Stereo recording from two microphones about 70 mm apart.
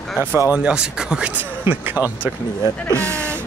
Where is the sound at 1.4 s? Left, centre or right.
Right.